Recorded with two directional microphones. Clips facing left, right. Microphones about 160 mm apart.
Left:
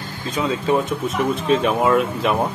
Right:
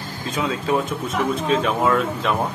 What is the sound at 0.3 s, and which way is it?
Speech, centre (ahead or behind).